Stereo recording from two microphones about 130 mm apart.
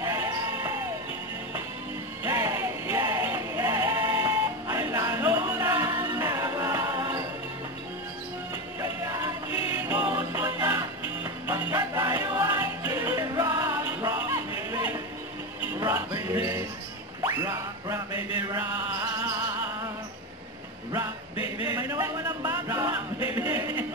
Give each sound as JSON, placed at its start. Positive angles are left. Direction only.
{"t": 0.0, "sound": "music", "side_deg": -20}
{"t": 2.2, "sound": "music", "side_deg": -15}
{"t": 9.0, "sound": "music", "side_deg": -20}
{"t": 9.5, "sound": "music", "side_deg": 45}
{"t": 9.8, "sound": "music", "side_deg": -15}
{"t": 14.7, "sound": "a sound", "side_deg": -15}
{"t": 15.8, "sound": "music", "side_deg": -20}
{"t": 17.2, "sound": "music", "side_deg": -25}
{"t": 21.4, "sound": "a sound", "side_deg": 45}
{"t": 21.7, "sound": "a sound", "side_deg": -15}
{"t": 22.4, "sound": "music", "side_deg": -25}
{"t": 23.3, "sound": "a sound", "side_deg": -15}